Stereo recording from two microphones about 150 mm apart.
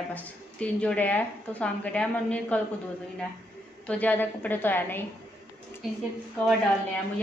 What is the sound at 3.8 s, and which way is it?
A woman's voice, 10° left (ahead or behind).